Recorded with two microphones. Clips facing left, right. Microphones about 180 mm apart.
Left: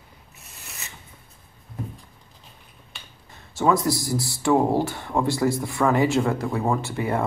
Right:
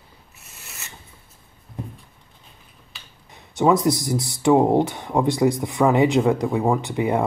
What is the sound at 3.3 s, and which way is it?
Speech, 20° right (ahead or behind).